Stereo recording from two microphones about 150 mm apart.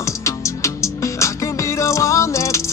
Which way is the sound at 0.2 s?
20° left (ahead or behind).